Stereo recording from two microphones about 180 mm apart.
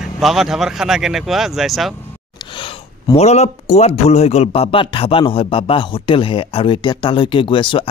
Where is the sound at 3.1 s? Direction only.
35° left (ahead or behind).